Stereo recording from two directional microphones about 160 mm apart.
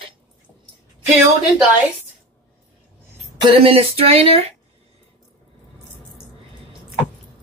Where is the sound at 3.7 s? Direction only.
35° right (ahead or behind).